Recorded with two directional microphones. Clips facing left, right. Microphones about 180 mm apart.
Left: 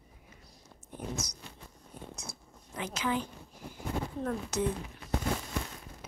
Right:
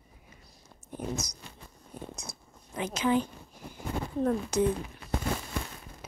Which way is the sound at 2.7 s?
20° right (ahead or behind).